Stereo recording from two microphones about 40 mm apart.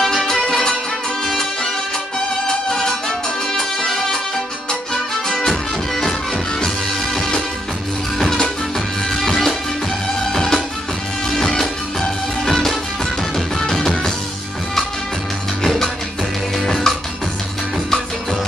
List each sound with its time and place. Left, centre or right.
0.0 s music: centre
7.2 s music: centre
9.1 s music: centre
15.6 s music: centre